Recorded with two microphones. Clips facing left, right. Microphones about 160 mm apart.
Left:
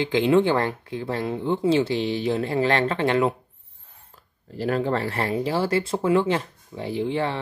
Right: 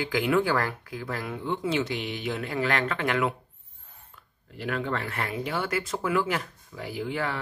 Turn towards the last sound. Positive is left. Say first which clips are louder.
# left 6 dB
turn(degrees=30)  # may be behind; listen again after turning